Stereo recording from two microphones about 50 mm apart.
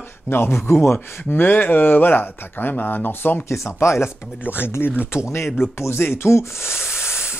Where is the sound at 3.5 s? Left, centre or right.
Left.